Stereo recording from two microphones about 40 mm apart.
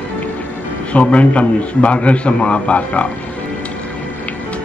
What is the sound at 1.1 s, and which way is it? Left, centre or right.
A man's voice, left.